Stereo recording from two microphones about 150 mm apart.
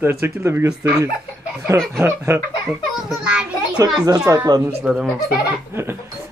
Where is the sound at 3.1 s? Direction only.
5° right (ahead or behind).